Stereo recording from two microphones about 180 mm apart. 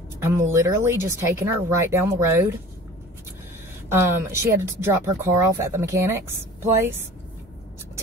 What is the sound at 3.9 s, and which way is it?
Speech, 15° right (ahead or behind).